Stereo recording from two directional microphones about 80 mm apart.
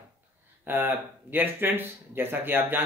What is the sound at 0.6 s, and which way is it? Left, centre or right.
Speech, right.